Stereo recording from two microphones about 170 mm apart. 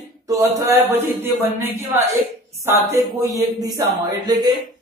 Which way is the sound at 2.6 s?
20° right (ahead or behind).